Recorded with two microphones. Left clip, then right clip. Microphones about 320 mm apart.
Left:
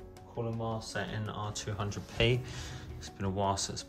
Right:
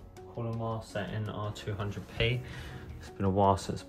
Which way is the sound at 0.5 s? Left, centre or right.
Centre.